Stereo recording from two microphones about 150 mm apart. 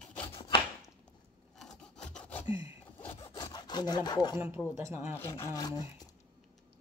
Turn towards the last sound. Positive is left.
turn(degrees=25)  # may be behind; listen again after turning